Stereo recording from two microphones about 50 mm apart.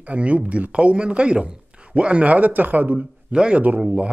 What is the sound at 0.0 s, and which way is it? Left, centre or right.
A man's voice, right.